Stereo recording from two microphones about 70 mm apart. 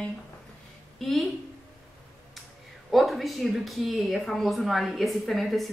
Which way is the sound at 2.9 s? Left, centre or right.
Centre.